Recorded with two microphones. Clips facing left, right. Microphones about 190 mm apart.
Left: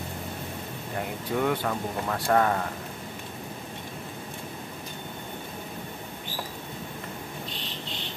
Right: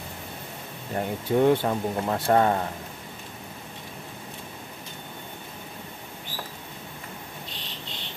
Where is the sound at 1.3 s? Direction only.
30° right (ahead or behind).